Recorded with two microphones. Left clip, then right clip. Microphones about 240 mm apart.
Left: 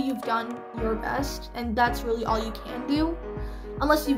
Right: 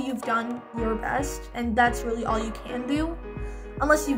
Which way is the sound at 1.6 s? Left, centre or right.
Centre.